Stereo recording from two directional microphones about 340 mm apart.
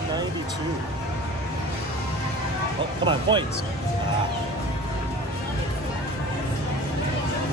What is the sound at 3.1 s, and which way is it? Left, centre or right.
Speech, centre.